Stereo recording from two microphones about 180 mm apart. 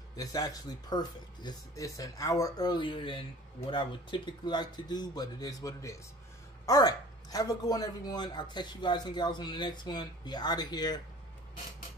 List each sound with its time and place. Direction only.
0.1 s speech: 20° left (ahead or behind)